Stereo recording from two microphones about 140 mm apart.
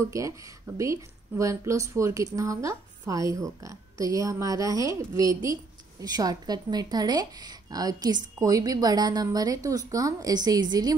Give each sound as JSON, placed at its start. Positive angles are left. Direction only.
{"t": 0.0, "sound": "a woman's voice", "side_deg": -25}